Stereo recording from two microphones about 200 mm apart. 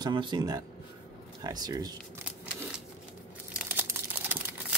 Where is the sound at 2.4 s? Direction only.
5° right (ahead or behind).